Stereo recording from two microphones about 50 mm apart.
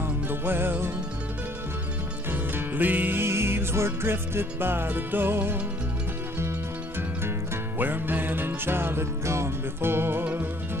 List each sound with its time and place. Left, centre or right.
0.0 s music: right
2.3 s music: right
7.8 s music: right
10.2 s music: right